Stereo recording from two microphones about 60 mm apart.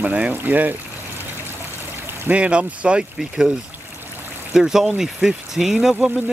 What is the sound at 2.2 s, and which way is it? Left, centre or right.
Speech, right.